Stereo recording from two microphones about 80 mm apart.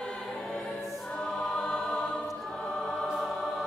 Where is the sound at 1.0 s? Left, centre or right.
Centre.